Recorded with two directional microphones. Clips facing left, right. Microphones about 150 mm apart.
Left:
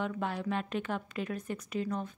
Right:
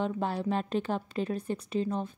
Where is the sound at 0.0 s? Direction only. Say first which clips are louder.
Right 4 dB; 30° right (ahead or behind).